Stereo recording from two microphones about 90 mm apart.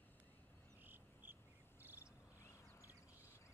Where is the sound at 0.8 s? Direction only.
20° right (ahead or behind).